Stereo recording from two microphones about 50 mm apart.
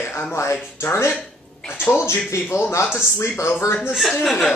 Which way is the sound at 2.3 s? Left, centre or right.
Left.